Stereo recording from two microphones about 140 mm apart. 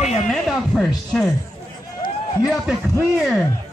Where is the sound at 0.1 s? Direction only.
Centre (ahead or behind).